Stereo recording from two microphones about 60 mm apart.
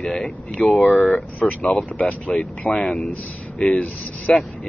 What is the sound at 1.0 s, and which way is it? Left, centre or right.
Speech, left.